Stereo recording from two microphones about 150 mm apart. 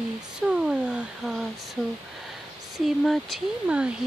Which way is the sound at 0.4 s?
5° right (ahead or behind).